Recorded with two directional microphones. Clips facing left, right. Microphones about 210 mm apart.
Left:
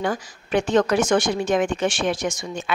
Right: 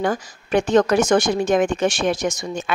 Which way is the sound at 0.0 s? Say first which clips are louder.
Right 3 dB; 45° right (ahead or behind).